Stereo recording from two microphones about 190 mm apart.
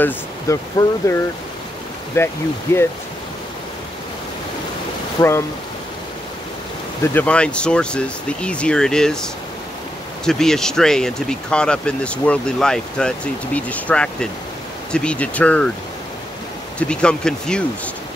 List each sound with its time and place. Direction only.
0.0 s speech: 15° left (ahead or behind)
5.2 s speech: 20° left (ahead or behind)
7.0 s speech: 10° left (ahead or behind)
16.7 s speech: 5° left (ahead or behind)